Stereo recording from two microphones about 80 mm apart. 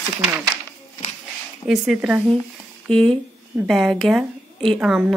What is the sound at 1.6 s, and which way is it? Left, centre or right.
Speech, centre.